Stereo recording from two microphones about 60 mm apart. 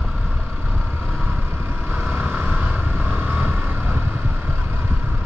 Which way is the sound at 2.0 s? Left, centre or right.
Right.